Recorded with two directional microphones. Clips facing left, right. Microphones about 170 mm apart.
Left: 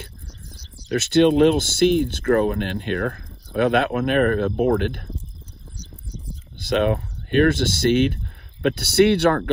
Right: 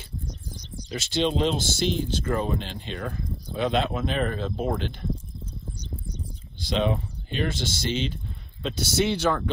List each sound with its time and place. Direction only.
0.8 s speech: 55° left (ahead or behind)
6.6 s speech: 55° left (ahead or behind)